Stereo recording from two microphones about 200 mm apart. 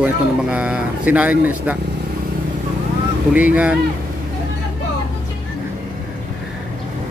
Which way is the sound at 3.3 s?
5° right (ahead or behind).